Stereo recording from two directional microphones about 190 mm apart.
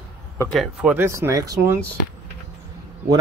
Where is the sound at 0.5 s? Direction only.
Centre (ahead or behind).